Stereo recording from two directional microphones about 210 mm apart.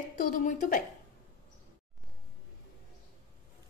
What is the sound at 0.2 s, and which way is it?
Speech, 40° left (ahead or behind).